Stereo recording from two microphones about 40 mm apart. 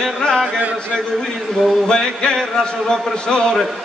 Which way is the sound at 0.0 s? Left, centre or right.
Centre.